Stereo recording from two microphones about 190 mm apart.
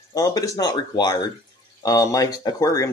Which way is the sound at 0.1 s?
20° left (ahead or behind).